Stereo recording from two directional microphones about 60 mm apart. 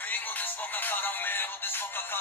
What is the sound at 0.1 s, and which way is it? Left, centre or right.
Music, left.